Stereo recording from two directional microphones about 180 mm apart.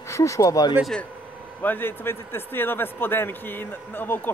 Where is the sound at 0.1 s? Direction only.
15° left (ahead or behind).